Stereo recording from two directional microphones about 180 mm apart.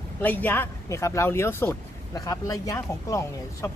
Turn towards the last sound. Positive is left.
turn(degrees=15)  # may be behind; listen again after turning